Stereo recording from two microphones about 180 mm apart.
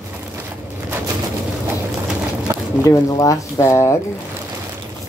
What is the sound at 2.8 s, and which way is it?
Speech, 20° left (ahead or behind).